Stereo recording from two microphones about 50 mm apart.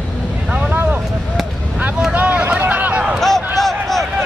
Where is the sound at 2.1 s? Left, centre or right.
Right.